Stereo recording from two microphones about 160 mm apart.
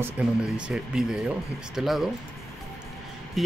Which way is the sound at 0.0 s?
5° right (ahead or behind).